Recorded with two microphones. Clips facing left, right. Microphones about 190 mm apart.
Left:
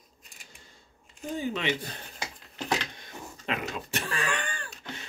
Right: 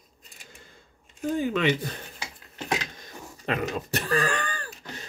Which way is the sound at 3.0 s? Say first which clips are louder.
Right 3 dB; 40° right (ahead or behind).